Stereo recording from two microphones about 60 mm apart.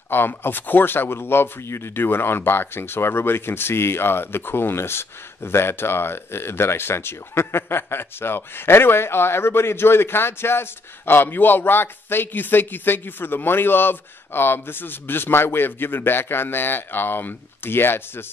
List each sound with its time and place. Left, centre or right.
0.1 s speech: left